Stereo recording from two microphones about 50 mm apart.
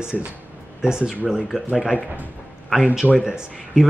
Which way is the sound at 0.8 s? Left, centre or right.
Centre.